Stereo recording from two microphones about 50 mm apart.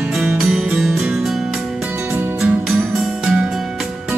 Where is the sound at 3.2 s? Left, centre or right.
Centre.